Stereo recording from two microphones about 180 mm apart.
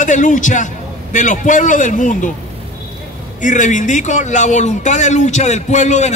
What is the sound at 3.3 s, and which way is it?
A man's voice, 45° left (ahead or behind).